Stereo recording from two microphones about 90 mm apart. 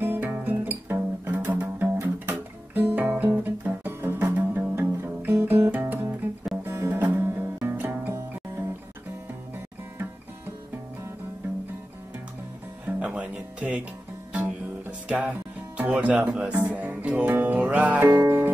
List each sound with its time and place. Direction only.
0.0 s music: 25° right (ahead or behind)
6.9 s music: 20° right (ahead or behind)
12.8 s music: 15° right (ahead or behind)
15.8 s speech: 15° right (ahead or behind)
16.5 s music: 20° right (ahead or behind)